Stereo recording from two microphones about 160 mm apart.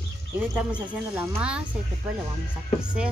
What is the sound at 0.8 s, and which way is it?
Speech, 10° right (ahead or behind).